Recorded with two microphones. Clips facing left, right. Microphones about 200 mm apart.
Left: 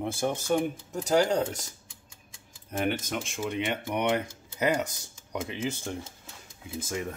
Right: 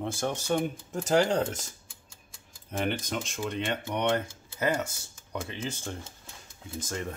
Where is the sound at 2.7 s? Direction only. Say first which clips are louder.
Left 1 dB; 5° left (ahead or behind).